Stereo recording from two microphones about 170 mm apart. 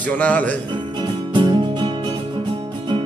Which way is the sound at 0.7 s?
25° right (ahead or behind).